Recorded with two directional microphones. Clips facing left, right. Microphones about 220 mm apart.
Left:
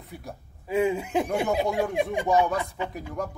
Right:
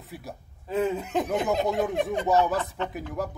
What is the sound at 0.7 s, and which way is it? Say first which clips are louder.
Speech: left 2 dB; 10° left (ahead or behind).